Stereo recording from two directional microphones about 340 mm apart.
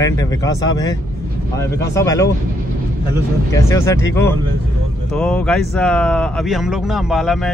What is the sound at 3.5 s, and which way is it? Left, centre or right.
Speech, centre.